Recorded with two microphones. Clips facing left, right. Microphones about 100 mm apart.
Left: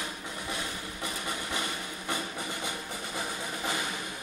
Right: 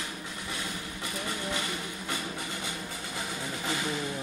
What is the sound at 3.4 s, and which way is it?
Music, 20° left (ahead or behind).